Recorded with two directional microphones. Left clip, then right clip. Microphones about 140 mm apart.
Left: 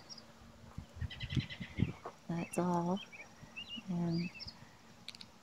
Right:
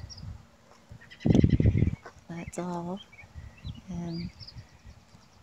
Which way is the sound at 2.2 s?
5° left (ahead or behind).